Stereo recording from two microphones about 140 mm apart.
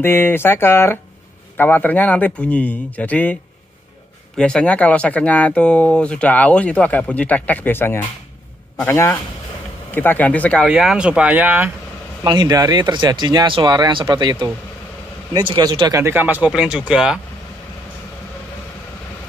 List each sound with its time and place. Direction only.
0.0 s speech: 15° left (ahead or behind)
4.4 s speech: 5° left (ahead or behind)
10.7 s speech: 5° right (ahead or behind)
12.2 s speech: 30° right (ahead or behind)
16.0 s speech: 15° right (ahead or behind)